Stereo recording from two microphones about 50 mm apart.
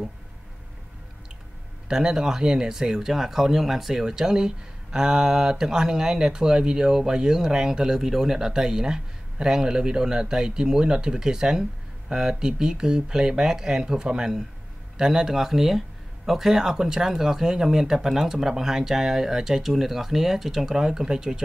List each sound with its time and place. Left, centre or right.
1.9 s speech: centre